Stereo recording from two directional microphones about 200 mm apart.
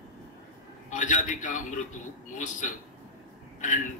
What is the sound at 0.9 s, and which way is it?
A man's voice, 40° left (ahead or behind).